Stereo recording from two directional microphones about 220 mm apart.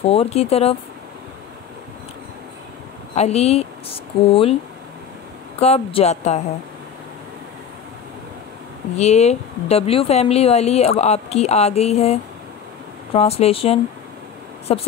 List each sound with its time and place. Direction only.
0.0 s a woman's voice: 25° left (ahead or behind)
3.2 s a woman's voice: 30° left (ahead or behind)
5.6 s a woman's voice: 25° left (ahead or behind)
8.9 s a woman's voice: 30° left (ahead or behind)